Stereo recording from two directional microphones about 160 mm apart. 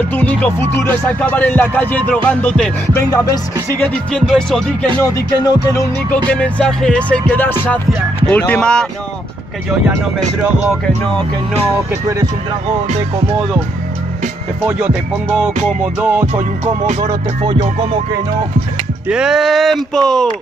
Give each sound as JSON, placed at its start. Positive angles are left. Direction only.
{"t": 0.1, "sound": "speech", "side_deg": 10}
{"t": 5.1, "sound": "music", "side_deg": 25}
{"t": 6.3, "sound": "speech", "side_deg": 5}
{"t": 15.2, "sound": "music", "side_deg": -5}
{"t": 17.0, "sound": "music", "side_deg": -25}
{"t": 19.0, "sound": "speech", "side_deg": -5}